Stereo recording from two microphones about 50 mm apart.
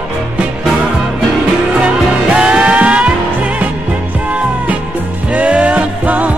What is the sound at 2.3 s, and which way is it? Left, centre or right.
Music, right.